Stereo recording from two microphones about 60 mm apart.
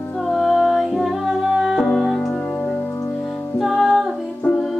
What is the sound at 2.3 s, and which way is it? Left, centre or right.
Organ, centre.